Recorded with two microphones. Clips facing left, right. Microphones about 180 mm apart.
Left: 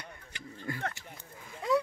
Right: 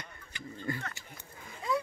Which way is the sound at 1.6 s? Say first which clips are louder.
Left 4 dB; 70° left (ahead or behind).